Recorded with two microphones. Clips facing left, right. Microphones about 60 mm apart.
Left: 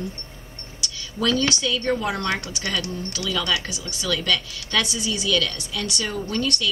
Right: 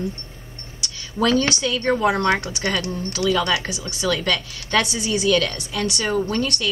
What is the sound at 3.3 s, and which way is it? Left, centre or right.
Speech, right.